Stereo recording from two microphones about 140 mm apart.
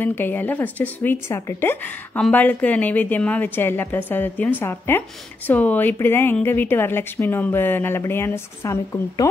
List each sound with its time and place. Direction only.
0.0 s a woman's voice: 15° left (ahead or behind)